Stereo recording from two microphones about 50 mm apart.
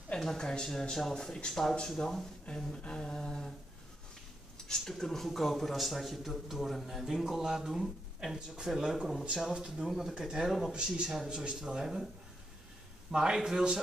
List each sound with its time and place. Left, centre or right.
0.2 s speech: centre
2.4 s a sound: left
4.6 s speech: centre
9.8 s speech: centre
13.1 s speech: centre